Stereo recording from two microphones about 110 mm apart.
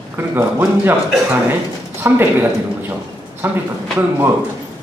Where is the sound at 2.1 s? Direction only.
20° right (ahead or behind).